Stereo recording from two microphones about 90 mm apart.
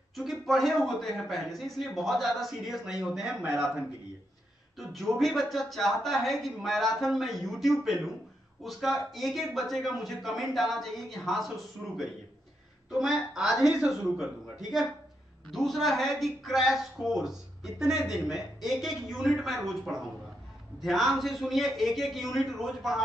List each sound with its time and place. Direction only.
0.1 s a man's voice: centre (ahead or behind)
13.6 s a man's voice: 40° left (ahead or behind)
13.8 s a man's voice: 5° right (ahead or behind)